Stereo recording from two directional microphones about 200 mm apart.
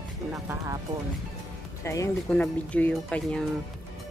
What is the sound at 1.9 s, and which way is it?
Speech, 10° left (ahead or behind).